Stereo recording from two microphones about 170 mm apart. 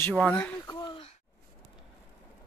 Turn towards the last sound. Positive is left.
turn(degrees=25)  # may be behind; listen again after turning